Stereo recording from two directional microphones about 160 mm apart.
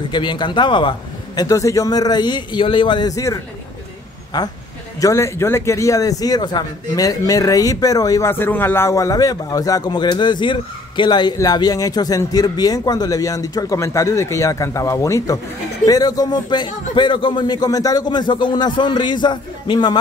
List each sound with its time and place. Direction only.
0.1 s a man's voice: 30° left (ahead or behind)
5.0 s a man's voice: 15° left (ahead or behind)